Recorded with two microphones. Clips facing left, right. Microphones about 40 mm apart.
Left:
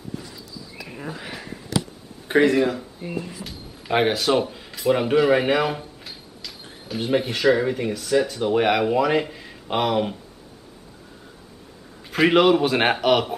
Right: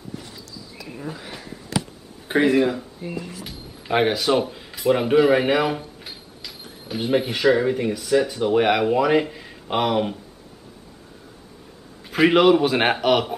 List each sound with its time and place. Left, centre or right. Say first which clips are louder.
0.8 s speech: right 1 dB; centre
2.2 s a man's voice: even; centre
3.0 s a man's voice: left 1 dB; centre
12.1 s a man's voice: right 1 dB; centre